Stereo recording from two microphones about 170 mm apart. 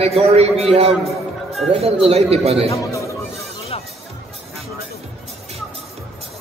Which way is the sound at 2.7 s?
20° left (ahead or behind).